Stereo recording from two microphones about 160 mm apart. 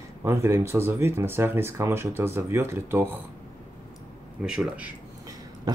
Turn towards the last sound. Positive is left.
turn(degrees=-5)  # may be behind; listen again after turning